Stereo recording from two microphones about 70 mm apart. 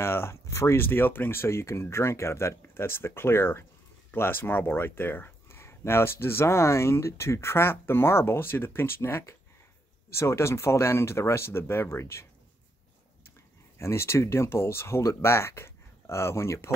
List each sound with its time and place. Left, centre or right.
0.0 s speech: left
0.7 s speech: left
13.7 s speech: left